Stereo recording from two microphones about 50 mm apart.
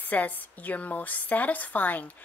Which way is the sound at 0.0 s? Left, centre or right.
Left.